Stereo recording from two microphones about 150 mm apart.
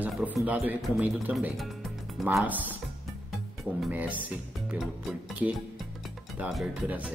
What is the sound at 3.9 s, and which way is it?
Speech, 10° right (ahead or behind).